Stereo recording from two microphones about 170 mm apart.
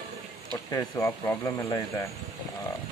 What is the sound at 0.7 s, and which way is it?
Speech, 20° left (ahead or behind).